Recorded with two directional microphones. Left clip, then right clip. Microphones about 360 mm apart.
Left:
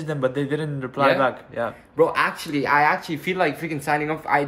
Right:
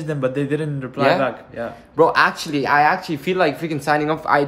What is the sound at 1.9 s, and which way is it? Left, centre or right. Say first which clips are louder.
Speech: right 5 dB; centre.